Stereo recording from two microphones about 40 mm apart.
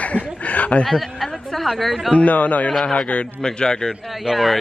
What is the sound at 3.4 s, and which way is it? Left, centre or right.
Speech, centre.